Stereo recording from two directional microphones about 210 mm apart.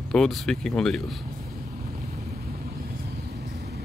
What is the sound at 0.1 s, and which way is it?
Speech, centre (ahead or behind).